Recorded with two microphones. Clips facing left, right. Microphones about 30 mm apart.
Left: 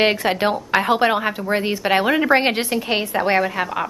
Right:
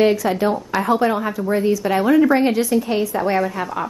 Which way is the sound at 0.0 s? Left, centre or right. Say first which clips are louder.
Right 1 dB; left.